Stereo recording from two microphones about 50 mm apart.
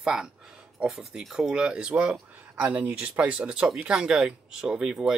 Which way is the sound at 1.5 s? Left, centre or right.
Centre.